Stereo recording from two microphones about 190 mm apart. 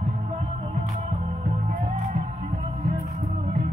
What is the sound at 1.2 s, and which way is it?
Music, 40° right (ahead or behind).